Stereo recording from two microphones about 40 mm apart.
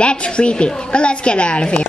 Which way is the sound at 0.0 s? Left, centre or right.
Left.